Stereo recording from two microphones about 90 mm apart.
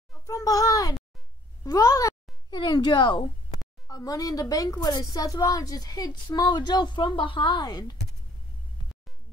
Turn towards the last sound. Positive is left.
turn(degrees=50)  # may be behind; listen again after turning